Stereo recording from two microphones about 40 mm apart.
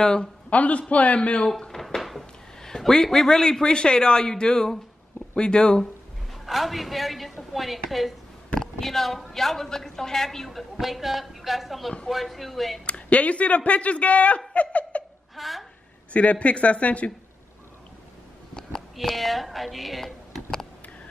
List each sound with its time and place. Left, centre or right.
0.0 s a man's voice: centre
0.5 s speech: left
2.0 s a sound: centre
2.6 s a man's voice: centre
6.4 s a woman's voice: centre
12.8 s speech: left
14.5 s giggle: left
15.3 s a sound: centre
16.1 s speech: left
18.9 s a woman's voice: centre